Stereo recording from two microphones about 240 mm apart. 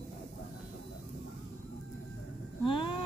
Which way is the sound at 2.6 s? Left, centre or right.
Left.